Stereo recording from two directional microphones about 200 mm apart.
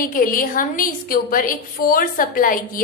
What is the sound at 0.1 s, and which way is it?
A woman's voice, 45° left (ahead or behind).